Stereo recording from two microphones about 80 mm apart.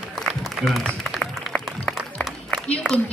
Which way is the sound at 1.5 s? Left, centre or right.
Centre.